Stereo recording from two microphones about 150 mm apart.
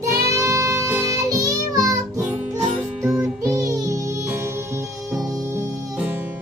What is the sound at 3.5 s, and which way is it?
Music, 25° right (ahead or behind).